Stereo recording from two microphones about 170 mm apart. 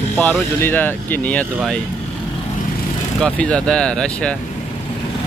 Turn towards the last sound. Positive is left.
turn(degrees=5)  # may be behind; listen again after turning